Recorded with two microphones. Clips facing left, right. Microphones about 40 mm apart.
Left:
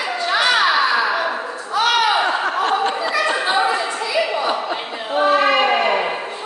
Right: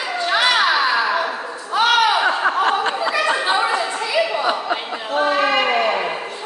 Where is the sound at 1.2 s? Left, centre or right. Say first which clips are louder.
Left 2 dB; centre.